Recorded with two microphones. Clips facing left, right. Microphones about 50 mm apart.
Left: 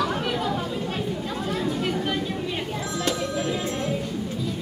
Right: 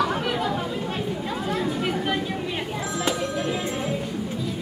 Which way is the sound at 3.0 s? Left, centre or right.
Centre.